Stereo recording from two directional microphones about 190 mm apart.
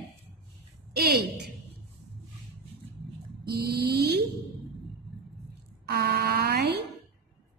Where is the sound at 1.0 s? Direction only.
60° right (ahead or behind).